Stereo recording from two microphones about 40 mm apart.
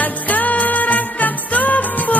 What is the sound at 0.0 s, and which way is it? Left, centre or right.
Music, left.